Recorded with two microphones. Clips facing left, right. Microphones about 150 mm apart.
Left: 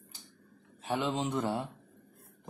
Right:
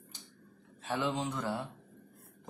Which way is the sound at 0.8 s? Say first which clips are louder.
Left 2 dB; 20° left (ahead or behind).